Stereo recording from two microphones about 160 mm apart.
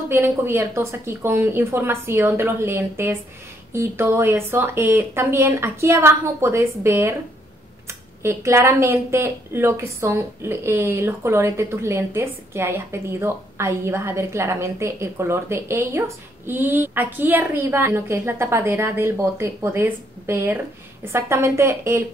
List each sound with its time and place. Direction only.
0.1 s a woman's voice: 15° right (ahead or behind)
8.2 s a woman's voice: 20° right (ahead or behind)